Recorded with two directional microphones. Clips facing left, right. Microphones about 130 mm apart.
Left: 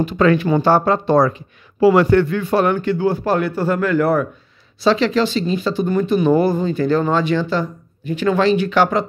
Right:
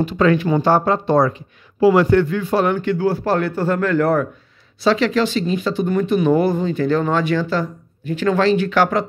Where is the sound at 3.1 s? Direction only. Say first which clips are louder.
Left 1 dB; 15° left (ahead or behind).